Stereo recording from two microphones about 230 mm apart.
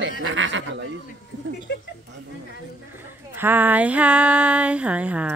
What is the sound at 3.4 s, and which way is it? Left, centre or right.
A woman's voice, centre.